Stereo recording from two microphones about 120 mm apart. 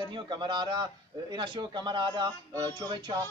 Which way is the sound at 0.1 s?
40° right (ahead or behind).